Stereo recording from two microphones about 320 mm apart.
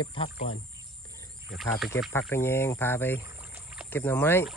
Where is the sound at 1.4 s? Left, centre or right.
Centre.